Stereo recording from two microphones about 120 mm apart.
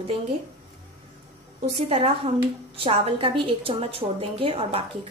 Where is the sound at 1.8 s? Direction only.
55° right (ahead or behind).